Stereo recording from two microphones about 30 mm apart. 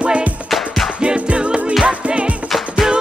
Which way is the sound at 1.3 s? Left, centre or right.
Right.